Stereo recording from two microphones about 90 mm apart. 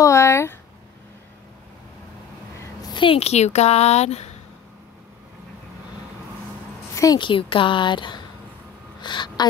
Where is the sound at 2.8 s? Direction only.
70° left (ahead or behind).